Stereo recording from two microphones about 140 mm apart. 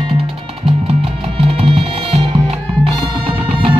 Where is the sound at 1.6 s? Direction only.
45° right (ahead or behind).